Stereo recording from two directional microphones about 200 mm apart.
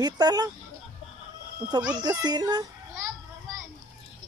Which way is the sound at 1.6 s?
20° right (ahead or behind).